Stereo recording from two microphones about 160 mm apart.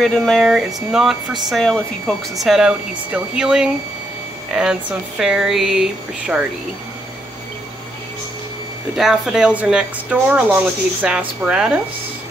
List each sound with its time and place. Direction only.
0.0 s speech: centre (ahead or behind)
8.9 s speech: 5° right (ahead or behind)